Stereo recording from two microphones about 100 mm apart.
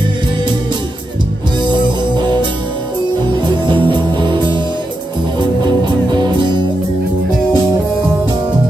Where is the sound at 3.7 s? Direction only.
50° right (ahead or behind).